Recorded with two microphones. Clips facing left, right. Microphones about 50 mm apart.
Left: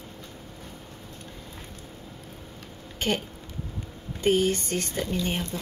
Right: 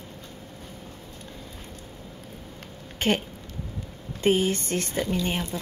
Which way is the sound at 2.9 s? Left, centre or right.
Right.